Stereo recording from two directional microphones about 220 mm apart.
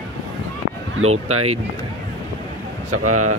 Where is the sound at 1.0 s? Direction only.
75° right (ahead or behind).